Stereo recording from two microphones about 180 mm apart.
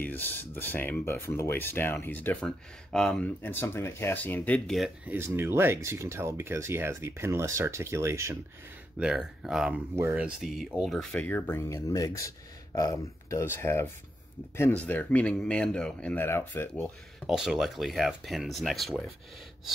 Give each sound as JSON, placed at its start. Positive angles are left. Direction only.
{"t": 0.0, "sound": "speech", "side_deg": 10}
{"t": 17.3, "sound": "speech", "side_deg": 0}